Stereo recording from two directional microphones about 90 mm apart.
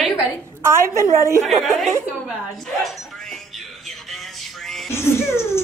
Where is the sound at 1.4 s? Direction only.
Centre (ahead or behind).